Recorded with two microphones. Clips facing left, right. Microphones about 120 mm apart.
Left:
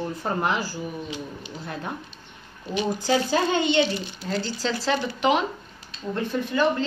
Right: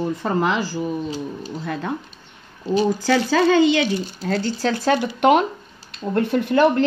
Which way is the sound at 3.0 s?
90° right.